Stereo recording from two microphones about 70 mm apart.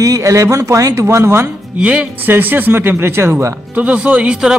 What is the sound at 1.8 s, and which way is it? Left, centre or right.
Speech, centre.